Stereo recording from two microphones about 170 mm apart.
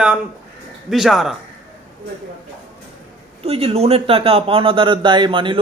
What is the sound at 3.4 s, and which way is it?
Speech, 35° right (ahead or behind).